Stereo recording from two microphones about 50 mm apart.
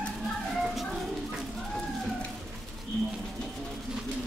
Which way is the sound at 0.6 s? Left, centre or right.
Centre.